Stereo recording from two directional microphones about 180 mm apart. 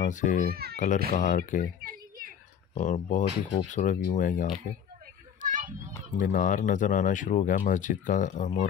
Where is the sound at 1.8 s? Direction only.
55° right (ahead or behind).